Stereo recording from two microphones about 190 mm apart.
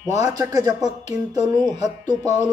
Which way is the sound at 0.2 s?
20° right (ahead or behind).